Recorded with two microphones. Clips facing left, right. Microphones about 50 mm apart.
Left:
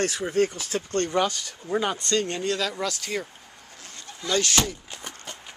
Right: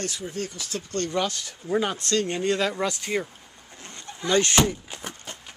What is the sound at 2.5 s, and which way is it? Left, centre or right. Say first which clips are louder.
Speech: right 3 dB; right.